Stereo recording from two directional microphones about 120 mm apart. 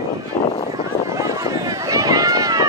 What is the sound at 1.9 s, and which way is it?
Run, 30° right (ahead or behind).